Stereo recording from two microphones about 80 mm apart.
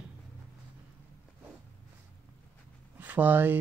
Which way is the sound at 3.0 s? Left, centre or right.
Right.